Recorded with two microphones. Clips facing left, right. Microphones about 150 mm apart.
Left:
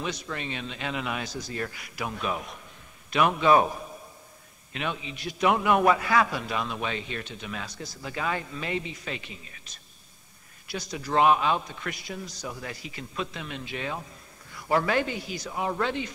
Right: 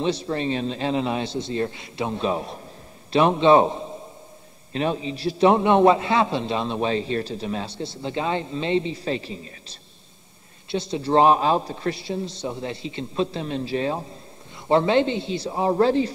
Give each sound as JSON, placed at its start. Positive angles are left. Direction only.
{"t": 0.0, "sound": "a man's voice", "side_deg": -30}